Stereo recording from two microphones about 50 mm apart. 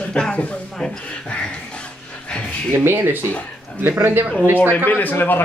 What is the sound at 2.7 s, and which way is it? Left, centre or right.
Speech, right.